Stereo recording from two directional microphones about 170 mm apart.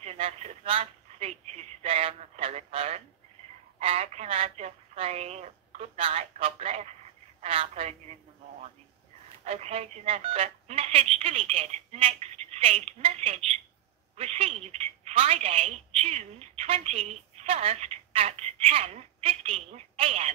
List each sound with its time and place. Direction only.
0.0 s a woman's voice: 40° right (ahead or behind)
9.4 s a woman's voice: 40° right (ahead or behind)